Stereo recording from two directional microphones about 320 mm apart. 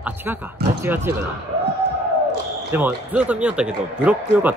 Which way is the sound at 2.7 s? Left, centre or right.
Centre.